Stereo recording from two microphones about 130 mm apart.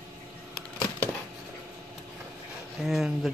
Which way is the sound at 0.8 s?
10° left (ahead or behind).